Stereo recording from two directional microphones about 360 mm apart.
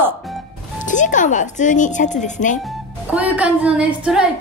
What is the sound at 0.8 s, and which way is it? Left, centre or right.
A woman's voice, left.